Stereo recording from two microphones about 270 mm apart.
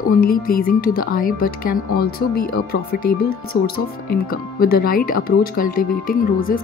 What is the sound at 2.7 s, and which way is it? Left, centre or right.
Speech, left.